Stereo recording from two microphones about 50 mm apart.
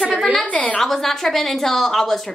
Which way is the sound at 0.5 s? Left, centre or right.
Left.